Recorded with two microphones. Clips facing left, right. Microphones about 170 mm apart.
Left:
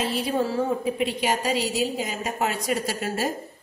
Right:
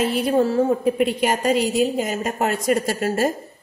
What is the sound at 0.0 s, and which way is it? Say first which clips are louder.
A woman's voice: right 6 dB; 55° right (ahead or behind).